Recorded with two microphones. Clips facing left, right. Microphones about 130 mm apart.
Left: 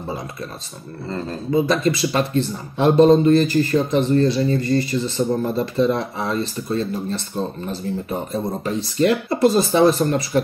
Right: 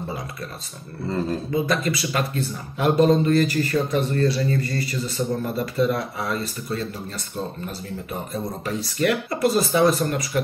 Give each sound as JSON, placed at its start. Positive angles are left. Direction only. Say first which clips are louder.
{"t": 1.5, "sound": "speech", "louder": "left 8 dB", "side_deg": 25}